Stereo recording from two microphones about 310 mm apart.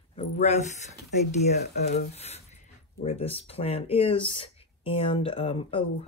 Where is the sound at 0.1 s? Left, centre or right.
Left.